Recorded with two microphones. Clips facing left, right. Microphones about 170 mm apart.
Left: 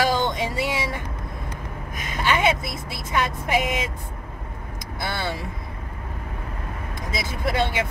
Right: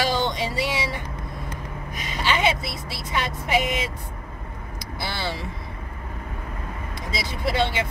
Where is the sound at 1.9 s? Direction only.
50° left (ahead or behind).